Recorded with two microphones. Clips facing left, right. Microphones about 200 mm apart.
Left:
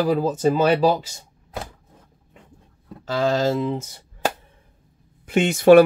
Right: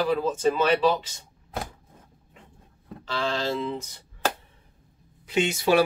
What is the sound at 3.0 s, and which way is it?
Speech, 45° left (ahead or behind).